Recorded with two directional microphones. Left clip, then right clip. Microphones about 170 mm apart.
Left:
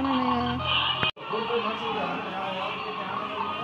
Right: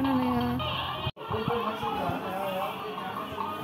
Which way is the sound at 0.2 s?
10° right (ahead or behind).